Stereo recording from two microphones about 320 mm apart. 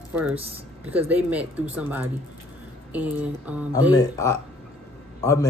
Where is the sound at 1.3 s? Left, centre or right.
Centre.